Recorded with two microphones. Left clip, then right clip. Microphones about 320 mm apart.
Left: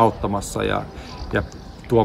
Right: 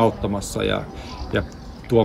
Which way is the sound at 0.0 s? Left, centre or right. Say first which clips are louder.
Left 2 dB; centre.